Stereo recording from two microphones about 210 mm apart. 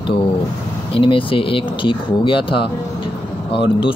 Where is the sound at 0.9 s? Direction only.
25° left (ahead or behind).